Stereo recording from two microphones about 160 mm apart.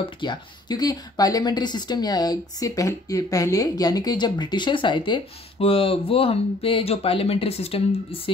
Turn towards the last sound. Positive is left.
turn(degrees=35)  # may be behind; listen again after turning